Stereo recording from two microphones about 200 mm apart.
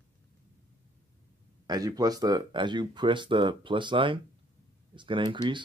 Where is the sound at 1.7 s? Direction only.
20° right (ahead or behind).